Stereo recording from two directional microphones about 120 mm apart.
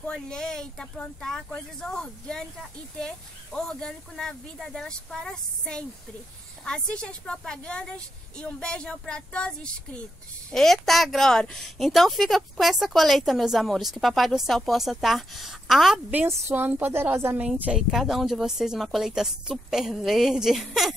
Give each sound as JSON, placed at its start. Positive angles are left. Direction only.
{"t": 0.0, "sound": "speech", "side_deg": 5}
{"t": 3.5, "sound": "speech", "side_deg": 5}
{"t": 16.1, "sound": "a woman's voice", "side_deg": -20}
{"t": 17.5, "sound": "speech", "side_deg": -5}